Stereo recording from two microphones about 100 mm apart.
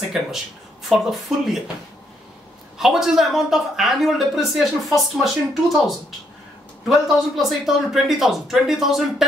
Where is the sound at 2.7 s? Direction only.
5° right (ahead or behind).